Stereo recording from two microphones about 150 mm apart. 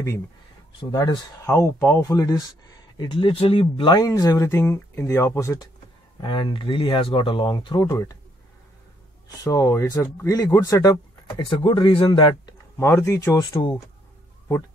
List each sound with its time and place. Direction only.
0.9 s speech: 20° left (ahead or behind)
6.2 s speech: 30° left (ahead or behind)
9.4 s speech: 20° left (ahead or behind)
12.7 s speech: 20° left (ahead or behind)
13.4 s speech: 35° left (ahead or behind)